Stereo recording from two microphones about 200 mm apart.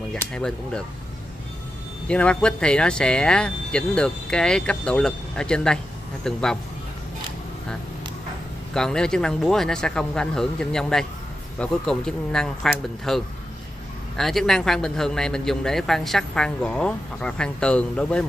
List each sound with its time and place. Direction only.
0.1 s a man's voice: 5° left (ahead or behind)
2.0 s a man's voice: 5° left (ahead or behind)
8.7 s a man's voice: 5° left (ahead or behind)